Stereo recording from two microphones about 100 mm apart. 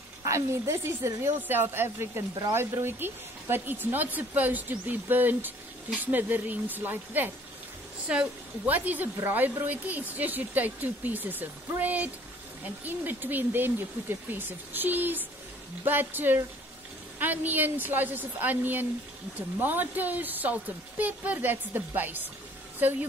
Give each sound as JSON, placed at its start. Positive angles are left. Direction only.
{"t": 0.2, "sound": "a woman's voice", "side_deg": -30}